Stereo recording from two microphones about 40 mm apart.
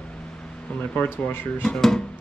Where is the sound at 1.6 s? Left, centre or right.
Centre.